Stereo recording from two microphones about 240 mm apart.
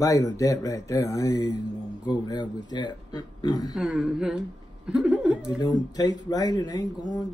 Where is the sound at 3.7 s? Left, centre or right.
Centre.